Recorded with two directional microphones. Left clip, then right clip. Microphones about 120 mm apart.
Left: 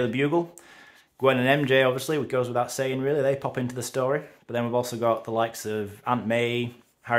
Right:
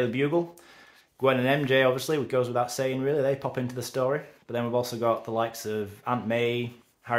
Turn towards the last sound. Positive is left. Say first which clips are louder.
# left 3 dB
turn(degrees=35)  # may be behind; listen again after turning